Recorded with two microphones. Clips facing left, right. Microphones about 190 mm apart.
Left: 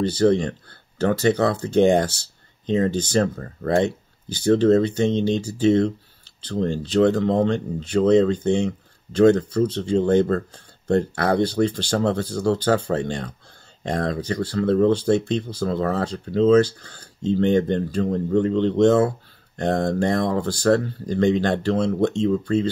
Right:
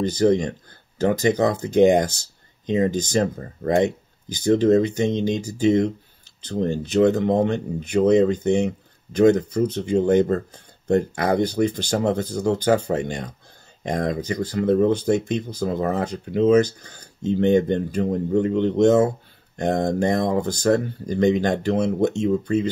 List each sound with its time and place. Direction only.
0.1 s speech: 15° right (ahead or behind)